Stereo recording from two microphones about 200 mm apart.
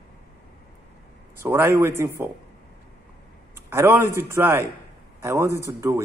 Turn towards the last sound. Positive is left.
turn(degrees=-15)  # may be behind; listen again after turning